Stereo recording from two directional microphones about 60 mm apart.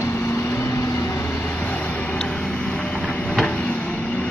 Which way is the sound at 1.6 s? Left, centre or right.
Left.